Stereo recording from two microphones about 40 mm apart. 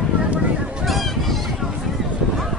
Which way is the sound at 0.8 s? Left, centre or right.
Centre.